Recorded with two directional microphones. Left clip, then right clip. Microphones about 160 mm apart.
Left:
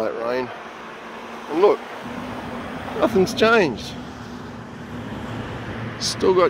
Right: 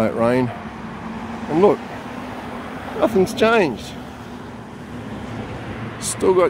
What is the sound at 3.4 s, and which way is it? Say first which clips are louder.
Speech: even; 5° right (ahead or behind).